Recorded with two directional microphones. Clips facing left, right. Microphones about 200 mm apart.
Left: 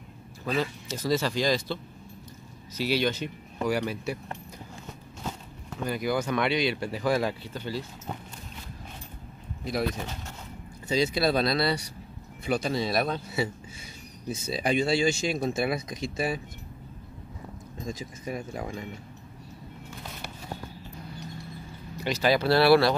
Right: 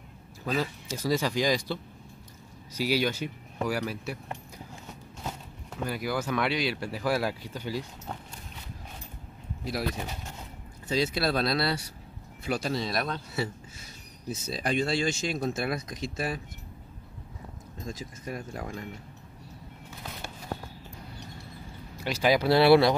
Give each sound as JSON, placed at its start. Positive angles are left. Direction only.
{"t": 0.5, "sound": "speech", "side_deg": -10}
{"t": 2.8, "sound": "speech", "side_deg": -10}
{"t": 5.7, "sound": "speech", "side_deg": -5}
{"t": 9.7, "sound": "speech", "side_deg": -5}
{"t": 14.5, "sound": "speech", "side_deg": 5}
{"t": 17.8, "sound": "speech", "side_deg": 0}
{"t": 22.0, "sound": "speech", "side_deg": -10}